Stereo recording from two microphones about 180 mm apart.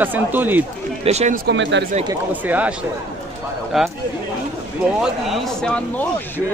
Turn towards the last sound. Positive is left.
turn(degrees=5)  # may be behind; listen again after turning